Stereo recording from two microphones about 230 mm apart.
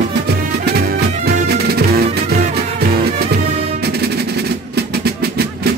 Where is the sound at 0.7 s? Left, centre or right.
Right.